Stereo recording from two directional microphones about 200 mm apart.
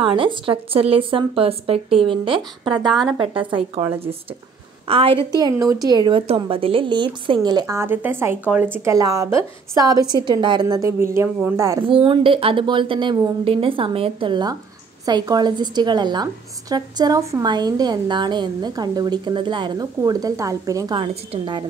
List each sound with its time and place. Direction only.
0.0 s a woman's voice: 25° right (ahead or behind)
2.9 s a woman's voice: centre (ahead or behind)
3.2 s a woman's voice: 25° right (ahead or behind)
4.8 s a woman's voice: 30° right (ahead or behind)
11.9 s a woman's voice: 25° right (ahead or behind)